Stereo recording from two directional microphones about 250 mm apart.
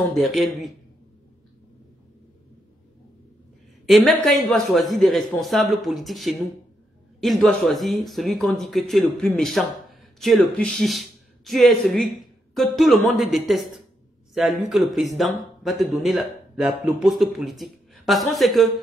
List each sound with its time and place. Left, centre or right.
0.1 s speech: centre
3.8 s speech: centre